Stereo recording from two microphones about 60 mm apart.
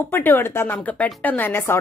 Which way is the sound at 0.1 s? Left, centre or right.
Left.